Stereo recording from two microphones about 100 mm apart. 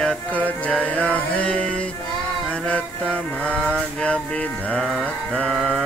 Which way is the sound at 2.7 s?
10° left (ahead or behind).